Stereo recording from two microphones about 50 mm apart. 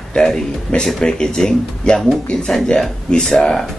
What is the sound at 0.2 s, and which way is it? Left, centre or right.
Speech, centre.